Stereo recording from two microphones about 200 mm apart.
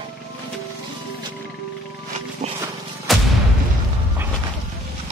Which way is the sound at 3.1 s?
Centre (ahead or behind).